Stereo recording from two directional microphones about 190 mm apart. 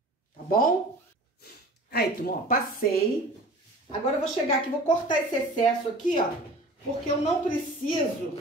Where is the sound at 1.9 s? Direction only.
55° left (ahead or behind).